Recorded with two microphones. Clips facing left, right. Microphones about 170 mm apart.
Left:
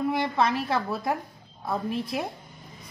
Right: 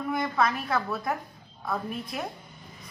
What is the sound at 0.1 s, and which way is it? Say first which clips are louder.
A woman's voice: left 2 dB; 30° left (ahead or behind).